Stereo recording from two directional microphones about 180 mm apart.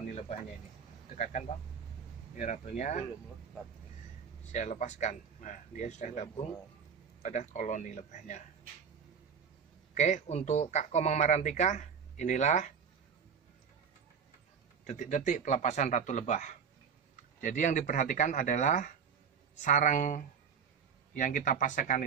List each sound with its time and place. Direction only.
0.0 s a sound: 40° left (ahead or behind)
1.1 s speech: 40° left (ahead or behind)
4.5 s speech: 40° left (ahead or behind)
9.9 s speech: 40° left (ahead or behind)
14.9 s speech: 40° left (ahead or behind)